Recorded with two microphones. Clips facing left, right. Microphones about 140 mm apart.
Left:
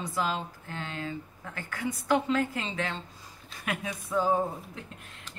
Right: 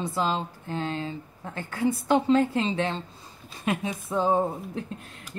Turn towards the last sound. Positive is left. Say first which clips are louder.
# right 4 dB
turn(degrees=-25)  # may be behind; listen again after turning